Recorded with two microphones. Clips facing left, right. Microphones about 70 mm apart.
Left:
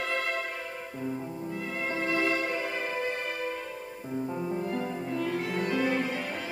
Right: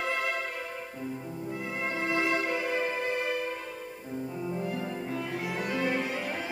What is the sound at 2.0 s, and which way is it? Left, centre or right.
Music, right.